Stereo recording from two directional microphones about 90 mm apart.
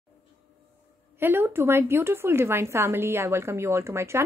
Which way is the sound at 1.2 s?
25° right (ahead or behind).